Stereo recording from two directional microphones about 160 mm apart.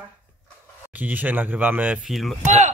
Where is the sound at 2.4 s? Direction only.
45° right (ahead or behind).